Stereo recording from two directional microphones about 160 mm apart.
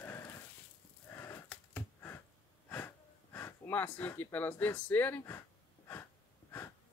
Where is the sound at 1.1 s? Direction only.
15° left (ahead or behind).